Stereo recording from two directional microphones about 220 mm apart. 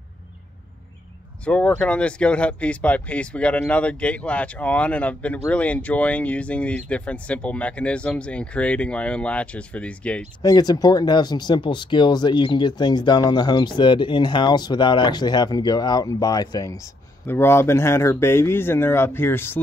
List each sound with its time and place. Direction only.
1.4 s speech: 5° left (ahead or behind)
10.4 s speech: 20° left (ahead or behind)